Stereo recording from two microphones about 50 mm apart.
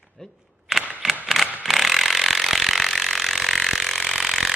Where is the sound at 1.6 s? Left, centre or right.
Centre.